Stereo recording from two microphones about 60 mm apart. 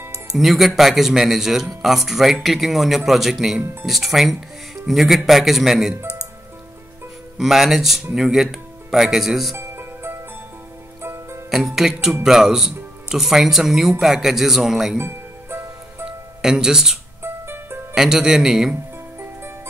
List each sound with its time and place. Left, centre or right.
0.4 s speech: centre
7.3 s speech: centre
9.6 s music: right
11.5 s speech: centre
15.0 s music: right
16.1 s music: centre
17.2 s music: right
17.9 s speech: centre